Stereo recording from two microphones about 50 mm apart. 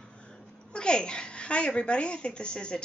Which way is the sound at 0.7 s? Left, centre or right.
Centre.